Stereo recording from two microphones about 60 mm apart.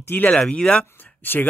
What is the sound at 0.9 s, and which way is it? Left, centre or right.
Speech, left.